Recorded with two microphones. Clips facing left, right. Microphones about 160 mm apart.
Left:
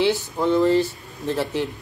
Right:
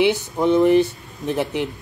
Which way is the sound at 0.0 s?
20° right (ahead or behind).